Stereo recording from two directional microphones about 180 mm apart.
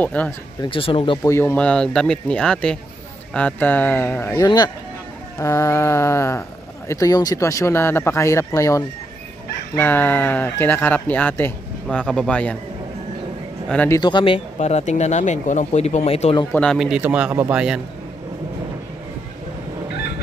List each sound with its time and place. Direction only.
0.0 s speech: 10° left (ahead or behind)
0.6 s speech: 30° left (ahead or behind)
1.3 s speech: 10° left (ahead or behind)
13.7 s a man's voice: 10° left (ahead or behind)
13.9 s speech: 25° left (ahead or behind)
16.5 s speech: centre (ahead or behind)